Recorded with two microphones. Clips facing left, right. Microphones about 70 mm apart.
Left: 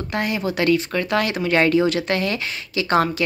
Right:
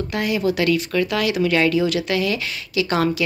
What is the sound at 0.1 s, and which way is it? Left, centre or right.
Speech, left.